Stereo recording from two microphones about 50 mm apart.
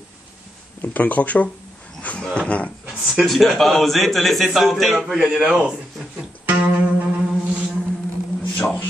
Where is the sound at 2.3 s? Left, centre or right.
Left.